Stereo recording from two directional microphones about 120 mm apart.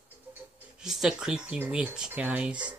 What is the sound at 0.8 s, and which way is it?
Speech, 5° right (ahead or behind).